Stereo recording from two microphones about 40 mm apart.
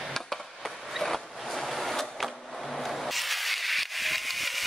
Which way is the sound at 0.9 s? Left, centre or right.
Centre.